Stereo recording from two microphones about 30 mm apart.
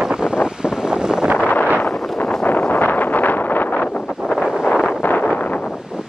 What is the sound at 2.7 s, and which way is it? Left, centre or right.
Wind noise, left.